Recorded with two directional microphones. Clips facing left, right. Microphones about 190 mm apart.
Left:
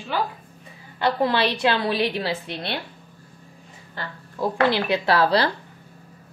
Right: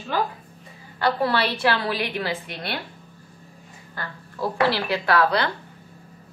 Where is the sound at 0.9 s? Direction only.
20° left (ahead or behind).